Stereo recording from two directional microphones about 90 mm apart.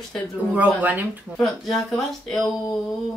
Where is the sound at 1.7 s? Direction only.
5° left (ahead or behind).